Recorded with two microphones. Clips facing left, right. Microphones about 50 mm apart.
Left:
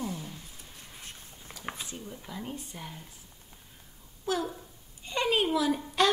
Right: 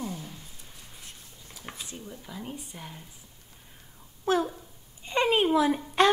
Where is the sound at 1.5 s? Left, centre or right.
Left.